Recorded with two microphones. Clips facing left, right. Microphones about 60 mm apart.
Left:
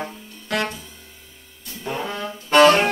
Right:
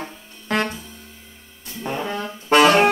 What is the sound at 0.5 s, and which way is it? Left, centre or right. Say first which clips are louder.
Music: right 2 dB; right.